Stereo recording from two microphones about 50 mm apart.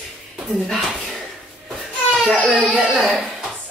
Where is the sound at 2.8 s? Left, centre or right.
Centre.